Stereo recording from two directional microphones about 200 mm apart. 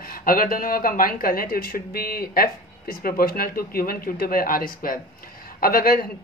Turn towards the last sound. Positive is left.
turn(degrees=45)  # may be behind; listen again after turning